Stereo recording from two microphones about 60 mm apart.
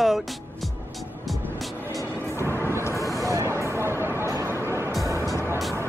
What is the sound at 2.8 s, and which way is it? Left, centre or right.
Vehicle, left.